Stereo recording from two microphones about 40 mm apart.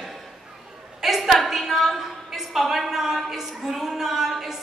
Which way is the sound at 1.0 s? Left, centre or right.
Centre.